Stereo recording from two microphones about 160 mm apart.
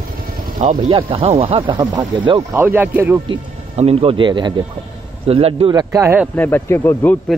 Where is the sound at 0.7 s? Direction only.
35° right (ahead or behind).